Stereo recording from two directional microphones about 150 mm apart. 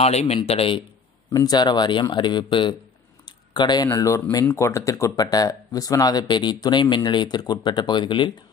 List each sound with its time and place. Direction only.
0.0 s a man's voice: 45° left (ahead or behind)
1.3 s speech: 25° left (ahead or behind)